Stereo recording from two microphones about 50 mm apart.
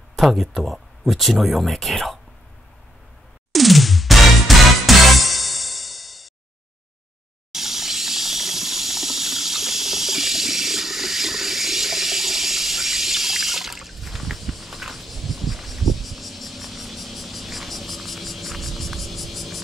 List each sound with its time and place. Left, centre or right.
0.2 s speech: centre
3.5 s music: centre
7.5 s a sound: centre